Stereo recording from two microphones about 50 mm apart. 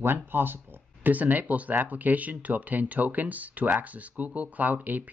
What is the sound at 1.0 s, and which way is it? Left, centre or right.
Speech, right.